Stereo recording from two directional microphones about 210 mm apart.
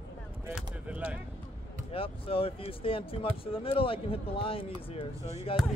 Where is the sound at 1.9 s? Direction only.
25° left (ahead or behind).